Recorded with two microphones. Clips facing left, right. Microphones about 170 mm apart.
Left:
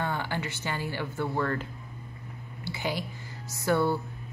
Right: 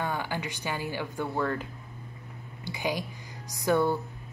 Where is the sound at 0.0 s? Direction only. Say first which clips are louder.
Even; 15° right (ahead or behind).